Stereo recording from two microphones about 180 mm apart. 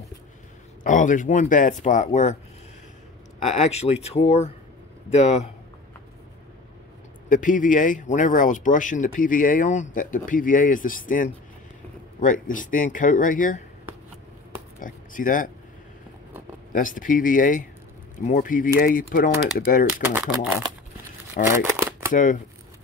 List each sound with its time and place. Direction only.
0.8 s speech: 45° left (ahead or behind)
3.4 s speech: 35° left (ahead or behind)
7.2 s speech: 45° left (ahead or behind)
14.8 s speech: 50° left (ahead or behind)
16.7 s speech: 50° left (ahead or behind)
19.9 s speech: 10° right (ahead or behind)
21.6 s shuffling cards: 15° right (ahead or behind)
22.1 s speech: 45° left (ahead or behind)